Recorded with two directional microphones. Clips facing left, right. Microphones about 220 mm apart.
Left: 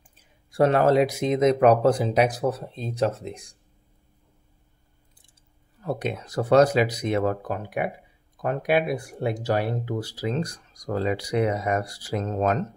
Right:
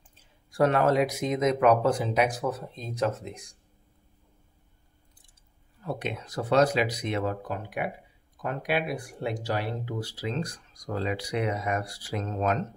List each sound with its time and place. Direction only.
0.5 s speech: 30° left (ahead or behind)
5.9 s speech: 40° left (ahead or behind)